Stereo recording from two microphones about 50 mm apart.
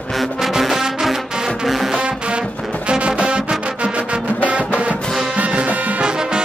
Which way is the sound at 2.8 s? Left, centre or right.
Right.